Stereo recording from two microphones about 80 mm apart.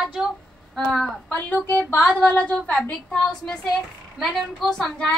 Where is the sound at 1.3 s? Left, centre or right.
Left.